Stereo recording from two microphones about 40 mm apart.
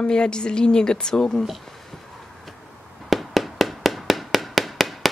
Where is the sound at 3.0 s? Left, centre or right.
Centre.